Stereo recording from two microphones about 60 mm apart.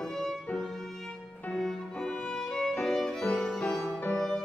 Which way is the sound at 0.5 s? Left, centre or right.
Centre.